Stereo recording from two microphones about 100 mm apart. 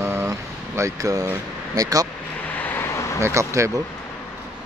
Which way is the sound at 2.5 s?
20° left (ahead or behind).